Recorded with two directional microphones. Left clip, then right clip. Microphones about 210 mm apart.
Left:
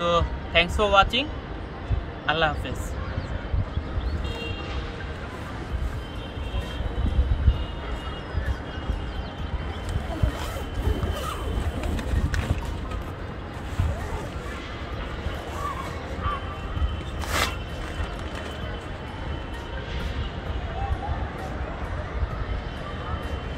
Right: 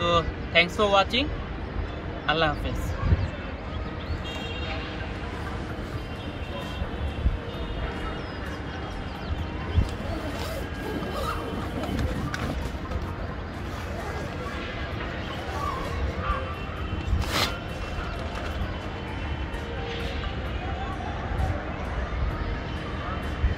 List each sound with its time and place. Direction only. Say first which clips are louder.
0.0 s speech: left 1 dB; centre (ahead or behind)
2.2 s a man's voice: left 1 dB; centre (ahead or behind)